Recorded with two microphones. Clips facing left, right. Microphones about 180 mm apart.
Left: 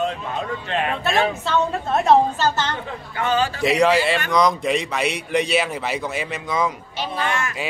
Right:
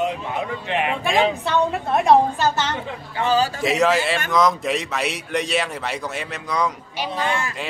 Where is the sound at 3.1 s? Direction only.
35° right (ahead or behind).